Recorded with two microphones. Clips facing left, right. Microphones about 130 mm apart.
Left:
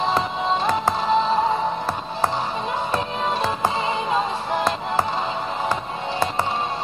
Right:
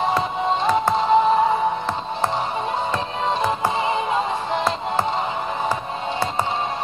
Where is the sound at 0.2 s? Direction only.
25° right (ahead or behind).